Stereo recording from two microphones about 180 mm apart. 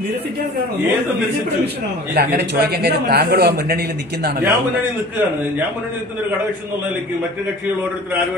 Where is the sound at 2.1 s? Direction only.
65° right (ahead or behind).